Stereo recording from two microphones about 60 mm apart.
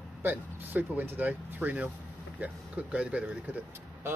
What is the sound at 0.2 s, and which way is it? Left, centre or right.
Speech, right.